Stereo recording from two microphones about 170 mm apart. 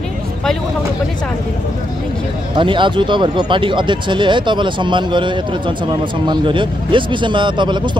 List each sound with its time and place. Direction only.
2.5 s speech: 30° right (ahead or behind)